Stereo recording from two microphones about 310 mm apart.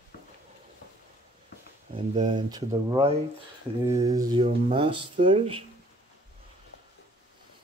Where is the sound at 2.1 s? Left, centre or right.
Centre.